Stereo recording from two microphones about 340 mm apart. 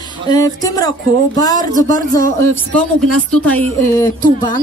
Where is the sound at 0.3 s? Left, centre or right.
Centre.